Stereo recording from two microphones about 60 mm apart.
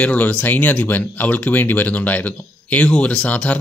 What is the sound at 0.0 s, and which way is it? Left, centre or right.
Speech, left.